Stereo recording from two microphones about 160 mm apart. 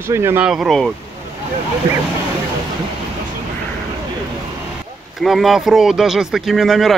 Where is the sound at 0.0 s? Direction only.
15° right (ahead or behind).